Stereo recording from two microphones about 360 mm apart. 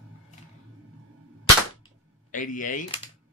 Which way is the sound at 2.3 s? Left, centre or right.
Left.